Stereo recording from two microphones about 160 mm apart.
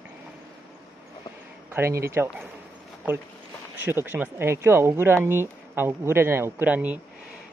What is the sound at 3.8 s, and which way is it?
Speech, 10° right (ahead or behind).